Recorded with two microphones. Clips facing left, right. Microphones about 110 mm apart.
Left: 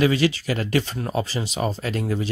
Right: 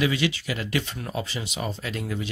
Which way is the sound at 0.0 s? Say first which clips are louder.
Left 5 dB; 40° left (ahead or behind).